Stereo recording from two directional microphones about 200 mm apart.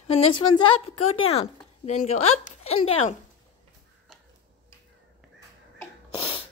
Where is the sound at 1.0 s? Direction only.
90° left.